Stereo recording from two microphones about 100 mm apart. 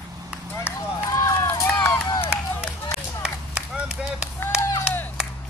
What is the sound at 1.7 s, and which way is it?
Run, 10° left (ahead or behind).